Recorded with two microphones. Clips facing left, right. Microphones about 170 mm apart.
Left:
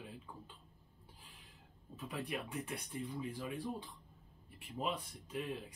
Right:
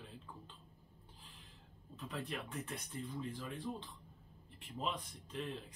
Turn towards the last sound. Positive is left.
turn(degrees=10)  # may be behind; listen again after turning